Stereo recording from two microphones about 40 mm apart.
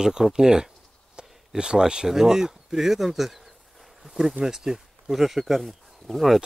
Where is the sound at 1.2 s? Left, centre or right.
Right.